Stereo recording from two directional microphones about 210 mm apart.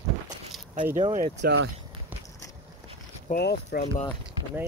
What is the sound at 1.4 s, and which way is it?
Speech, 55° right (ahead or behind).